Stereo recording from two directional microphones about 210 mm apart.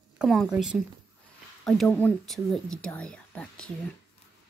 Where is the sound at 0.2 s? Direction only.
Centre (ahead or behind).